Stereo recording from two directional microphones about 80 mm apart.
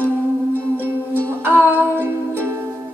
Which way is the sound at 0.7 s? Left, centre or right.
Right.